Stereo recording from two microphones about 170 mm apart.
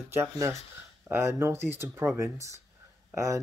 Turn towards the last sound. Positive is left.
turn(degrees=-15)  # may be behind; listen again after turning